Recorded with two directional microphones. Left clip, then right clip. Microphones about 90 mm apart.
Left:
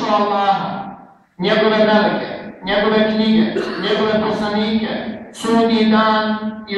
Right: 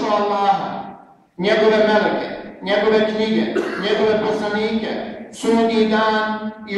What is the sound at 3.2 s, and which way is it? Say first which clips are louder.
A man's voice: left 2 dB; 25° right (ahead or behind).